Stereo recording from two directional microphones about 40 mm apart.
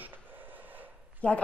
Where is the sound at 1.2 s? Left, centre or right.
Left.